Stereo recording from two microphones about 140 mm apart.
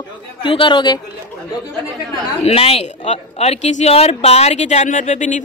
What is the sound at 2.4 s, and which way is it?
Speech, 45° left (ahead or behind).